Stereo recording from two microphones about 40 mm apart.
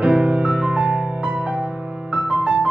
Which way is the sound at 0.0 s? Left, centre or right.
Right.